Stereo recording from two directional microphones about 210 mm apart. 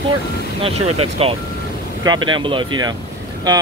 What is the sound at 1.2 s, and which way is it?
Speech, 30° right (ahead or behind).